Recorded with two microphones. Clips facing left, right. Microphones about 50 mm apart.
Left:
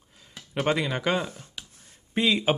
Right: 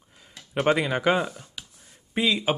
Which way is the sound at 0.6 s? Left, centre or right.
Centre.